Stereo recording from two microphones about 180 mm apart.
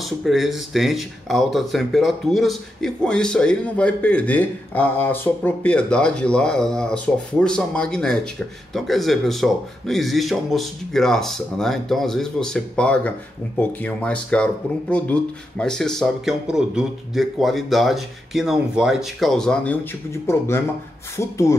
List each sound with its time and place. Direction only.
0.0 s speech: centre (ahead or behind); by 21.5 s 15° left (ahead or behind)